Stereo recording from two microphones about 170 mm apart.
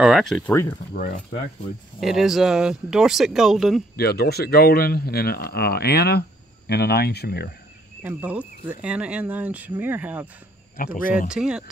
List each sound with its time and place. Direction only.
0.0 s speech: centre (ahead or behind)
0.9 s speech: 45° left (ahead or behind)
2.0 s speech: centre (ahead or behind)
3.9 s speech: 70° left (ahead or behind)
8.0 s speech: 10° right (ahead or behind)
10.8 s speech: 55° left (ahead or behind)
11.2 s speech: 5° right (ahead or behind)